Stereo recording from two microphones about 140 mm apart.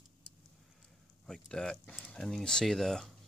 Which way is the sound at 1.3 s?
5° left (ahead or behind).